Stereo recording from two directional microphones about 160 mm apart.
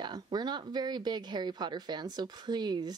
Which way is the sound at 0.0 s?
25° right (ahead or behind).